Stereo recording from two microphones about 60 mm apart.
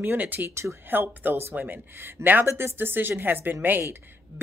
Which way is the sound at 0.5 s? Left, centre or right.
Right.